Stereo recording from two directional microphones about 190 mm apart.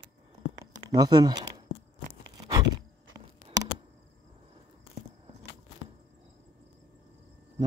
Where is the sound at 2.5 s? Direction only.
20° right (ahead or behind).